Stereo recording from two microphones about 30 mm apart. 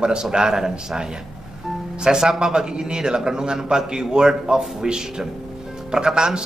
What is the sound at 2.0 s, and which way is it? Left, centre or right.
A man's voice, right.